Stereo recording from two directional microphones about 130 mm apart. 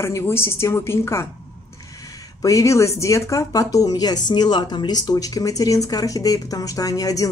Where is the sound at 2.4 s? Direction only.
25° left (ahead or behind).